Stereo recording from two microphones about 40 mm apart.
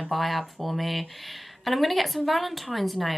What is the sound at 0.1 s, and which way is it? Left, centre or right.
Speech, centre.